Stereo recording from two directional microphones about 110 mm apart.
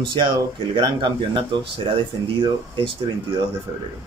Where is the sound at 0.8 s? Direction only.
45° right (ahead or behind).